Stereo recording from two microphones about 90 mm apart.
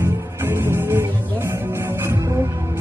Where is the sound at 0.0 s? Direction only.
25° right (ahead or behind).